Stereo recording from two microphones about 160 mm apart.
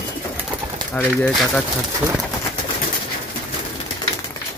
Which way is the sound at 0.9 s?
5° left (ahead or behind).